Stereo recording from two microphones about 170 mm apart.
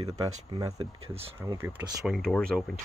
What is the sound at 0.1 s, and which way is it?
Speech, 20° right (ahead or behind).